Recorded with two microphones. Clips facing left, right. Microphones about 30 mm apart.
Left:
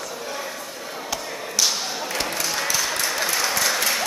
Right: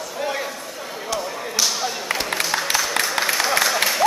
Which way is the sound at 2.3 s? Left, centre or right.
Right.